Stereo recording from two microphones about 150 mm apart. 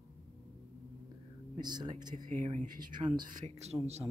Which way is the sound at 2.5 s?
60° right (ahead or behind).